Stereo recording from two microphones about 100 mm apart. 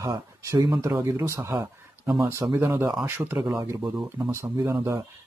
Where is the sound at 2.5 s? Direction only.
25° right (ahead or behind).